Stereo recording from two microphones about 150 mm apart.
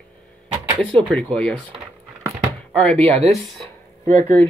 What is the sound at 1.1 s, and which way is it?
Speech, 5° left (ahead or behind).